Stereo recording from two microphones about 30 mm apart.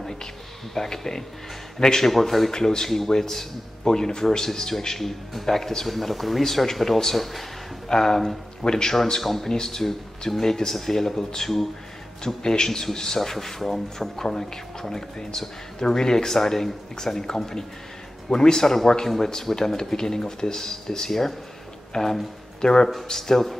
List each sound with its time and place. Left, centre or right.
0.7 s a man's voice: centre
2.0 s speech: centre
2.5 s a man's voice: left
4.5 s a man's voice: centre
5.9 s a man's voice: centre
7.9 s a man's voice: centre
9.2 s a man's voice: centre
9.5 s a man's voice: centre
18.3 s speech: left
19.0 s a man's voice: centre
21.1 s a man's voice: centre
23.1 s a man's voice: centre